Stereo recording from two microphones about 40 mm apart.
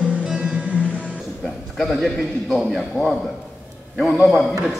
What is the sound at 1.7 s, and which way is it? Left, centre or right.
A man's voice, centre.